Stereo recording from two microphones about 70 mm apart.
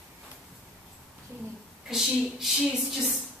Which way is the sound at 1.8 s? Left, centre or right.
Centre.